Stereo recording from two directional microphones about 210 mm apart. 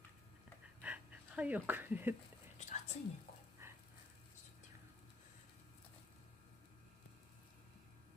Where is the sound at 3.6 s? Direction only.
15° right (ahead or behind).